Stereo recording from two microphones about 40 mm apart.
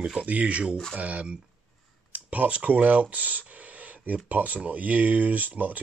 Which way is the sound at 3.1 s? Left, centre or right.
Right.